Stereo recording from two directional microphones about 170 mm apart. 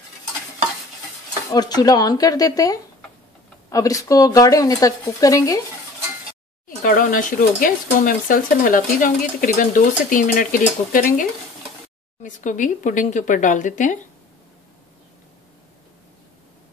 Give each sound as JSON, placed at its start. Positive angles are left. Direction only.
{"t": 1.5, "sound": "speech", "side_deg": 25}
{"t": 6.8, "sound": "speech", "side_deg": 55}